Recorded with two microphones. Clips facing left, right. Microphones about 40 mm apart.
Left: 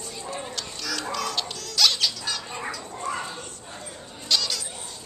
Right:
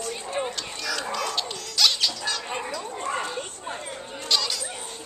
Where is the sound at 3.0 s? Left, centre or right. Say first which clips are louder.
Right 1 dB; right.